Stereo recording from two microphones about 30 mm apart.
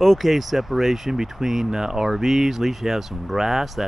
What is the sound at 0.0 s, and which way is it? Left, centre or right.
Speech, centre.